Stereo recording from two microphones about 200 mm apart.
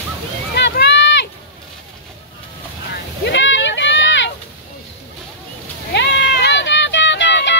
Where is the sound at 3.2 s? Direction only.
65° left (ahead or behind).